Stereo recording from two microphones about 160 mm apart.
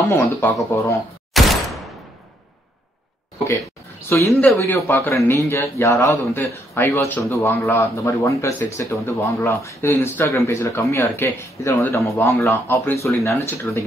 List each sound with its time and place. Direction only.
0.1 s speech: 15° left (ahead or behind)
1.3 s a sound: centre (ahead or behind)
4.1 s speech: 15° left (ahead or behind)